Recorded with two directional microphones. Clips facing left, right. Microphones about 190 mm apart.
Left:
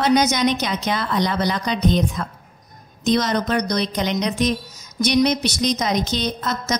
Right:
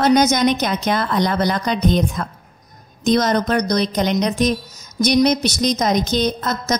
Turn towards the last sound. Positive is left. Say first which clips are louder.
# right 3 dB
turn(degrees=-45)  # may be behind; listen again after turning